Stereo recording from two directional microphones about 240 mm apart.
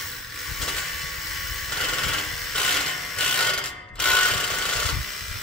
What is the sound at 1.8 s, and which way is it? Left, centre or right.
Ratchet, centre.